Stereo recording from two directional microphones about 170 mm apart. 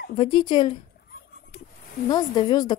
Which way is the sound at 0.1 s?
30° left (ahead or behind).